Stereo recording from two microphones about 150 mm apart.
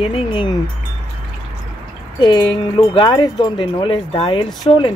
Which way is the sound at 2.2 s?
35° left (ahead or behind).